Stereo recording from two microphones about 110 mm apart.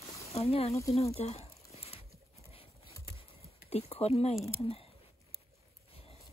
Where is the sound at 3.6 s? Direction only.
70° left (ahead or behind).